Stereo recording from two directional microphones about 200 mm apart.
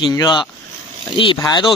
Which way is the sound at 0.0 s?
20° left (ahead or behind).